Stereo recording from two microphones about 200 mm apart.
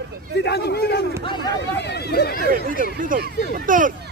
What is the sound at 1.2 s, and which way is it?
Speech, 20° left (ahead or behind).